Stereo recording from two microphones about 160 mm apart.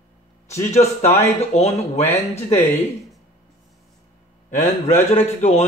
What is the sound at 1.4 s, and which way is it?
Speech, 45° left (ahead or behind).